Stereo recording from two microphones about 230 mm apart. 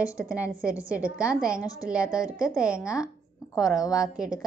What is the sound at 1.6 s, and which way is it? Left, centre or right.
Speech, centre.